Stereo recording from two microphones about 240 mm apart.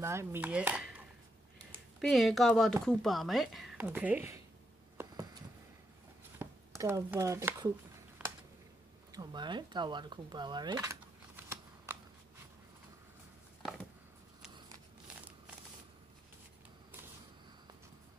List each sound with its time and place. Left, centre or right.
0.0 s speech: centre
6.3 s a sound: centre
8.2 s typing: centre
9.1 s speech: centre